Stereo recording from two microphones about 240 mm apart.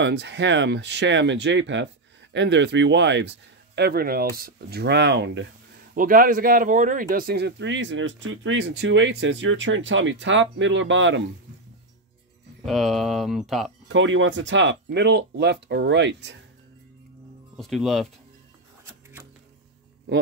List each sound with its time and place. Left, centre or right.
0.0 s speech: right
5.9 s speech: right
12.6 s speech: centre
13.8 s speech: right
17.6 s speech: centre